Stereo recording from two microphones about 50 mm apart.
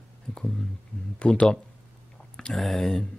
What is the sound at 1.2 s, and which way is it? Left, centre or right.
Speech, centre.